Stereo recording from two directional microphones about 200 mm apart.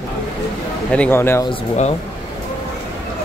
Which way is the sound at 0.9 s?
10° left (ahead or behind).